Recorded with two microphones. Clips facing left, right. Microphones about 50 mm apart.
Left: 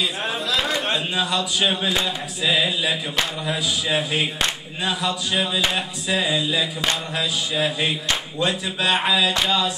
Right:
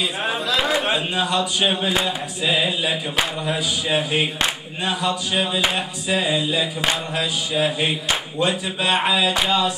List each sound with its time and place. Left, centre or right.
0.0 s a man's voice: centre